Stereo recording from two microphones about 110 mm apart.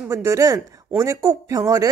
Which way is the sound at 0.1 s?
30° right (ahead or behind).